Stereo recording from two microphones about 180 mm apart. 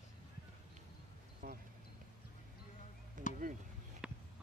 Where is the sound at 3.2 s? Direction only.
45° right (ahead or behind).